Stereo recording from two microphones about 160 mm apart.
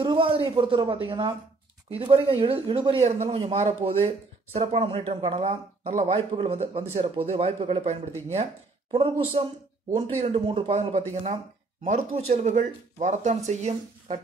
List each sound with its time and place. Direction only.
0.0 s speech: 30° right (ahead or behind)